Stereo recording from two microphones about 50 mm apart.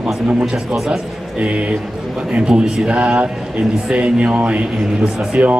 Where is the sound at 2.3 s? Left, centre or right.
Centre.